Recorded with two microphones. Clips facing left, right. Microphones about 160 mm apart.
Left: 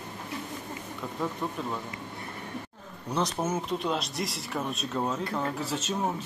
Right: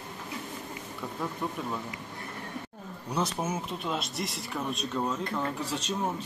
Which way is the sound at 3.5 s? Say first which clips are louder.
Left 4 dB; centre (ahead or behind).